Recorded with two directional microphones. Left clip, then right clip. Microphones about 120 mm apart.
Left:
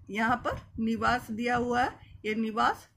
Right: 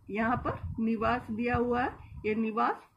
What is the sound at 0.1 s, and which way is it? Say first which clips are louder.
Speech: left 2 dB; 85° left.